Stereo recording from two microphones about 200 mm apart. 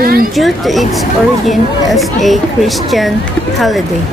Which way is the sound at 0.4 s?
Centre (ahead or behind).